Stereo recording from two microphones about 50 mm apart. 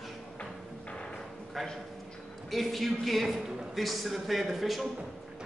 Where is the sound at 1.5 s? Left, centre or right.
Centre.